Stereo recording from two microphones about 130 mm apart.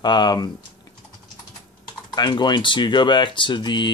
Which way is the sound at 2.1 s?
35° left (ahead or behind).